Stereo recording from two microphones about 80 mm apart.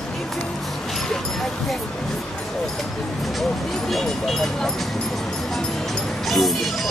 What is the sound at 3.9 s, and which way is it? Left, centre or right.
Vehicle, centre.